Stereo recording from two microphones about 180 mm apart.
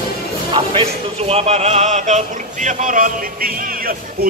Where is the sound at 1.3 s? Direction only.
35° right (ahead or behind).